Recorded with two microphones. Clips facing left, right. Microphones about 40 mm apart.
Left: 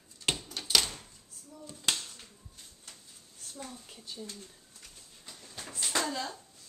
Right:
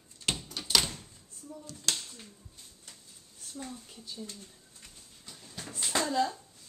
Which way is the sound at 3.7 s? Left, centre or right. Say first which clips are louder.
Right 2 dB; centre.